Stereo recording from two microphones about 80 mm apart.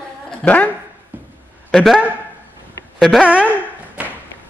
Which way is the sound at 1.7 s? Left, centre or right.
Centre.